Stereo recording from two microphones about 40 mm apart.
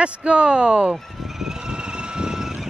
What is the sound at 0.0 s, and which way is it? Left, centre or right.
Speech, right.